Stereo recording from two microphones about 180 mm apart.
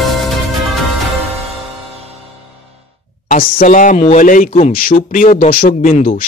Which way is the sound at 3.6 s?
45° left (ahead or behind).